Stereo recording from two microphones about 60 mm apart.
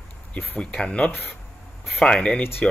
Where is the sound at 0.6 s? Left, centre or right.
Centre.